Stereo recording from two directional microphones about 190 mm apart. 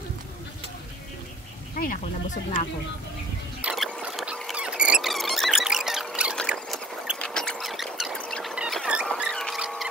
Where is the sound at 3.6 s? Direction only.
5° right (ahead or behind).